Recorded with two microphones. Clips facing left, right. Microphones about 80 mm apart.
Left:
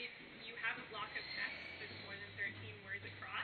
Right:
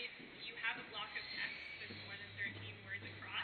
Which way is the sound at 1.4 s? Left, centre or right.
Left.